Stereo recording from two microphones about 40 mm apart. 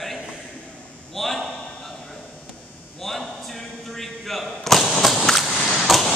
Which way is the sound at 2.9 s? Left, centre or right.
Centre.